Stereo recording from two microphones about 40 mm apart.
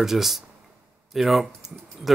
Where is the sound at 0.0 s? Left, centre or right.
Centre.